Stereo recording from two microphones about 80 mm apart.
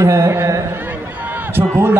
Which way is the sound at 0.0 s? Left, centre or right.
Right.